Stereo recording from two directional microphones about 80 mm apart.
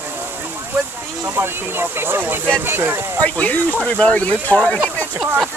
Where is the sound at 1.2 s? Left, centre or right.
Right.